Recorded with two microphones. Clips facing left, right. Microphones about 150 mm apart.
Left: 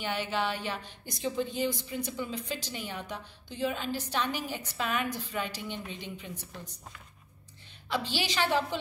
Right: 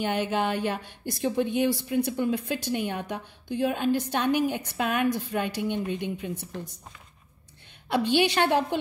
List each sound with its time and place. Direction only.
0.0 s a woman's voice: 50° right (ahead or behind)
7.9 s a woman's voice: 60° right (ahead or behind)